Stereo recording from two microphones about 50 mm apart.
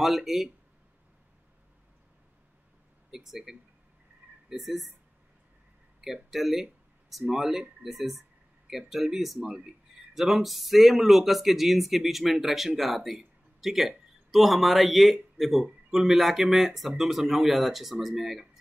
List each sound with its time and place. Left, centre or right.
0.0 s speech: centre
3.1 s speech: centre
5.9 s a sound: centre
7.3 s speech: centre